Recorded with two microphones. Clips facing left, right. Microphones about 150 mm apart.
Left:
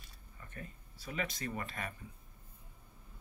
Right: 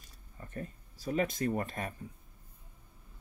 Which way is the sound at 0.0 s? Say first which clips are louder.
Right 5 dB; 40° right (ahead or behind).